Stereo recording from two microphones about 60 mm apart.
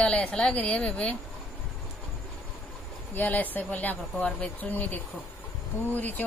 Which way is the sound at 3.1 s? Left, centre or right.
Left.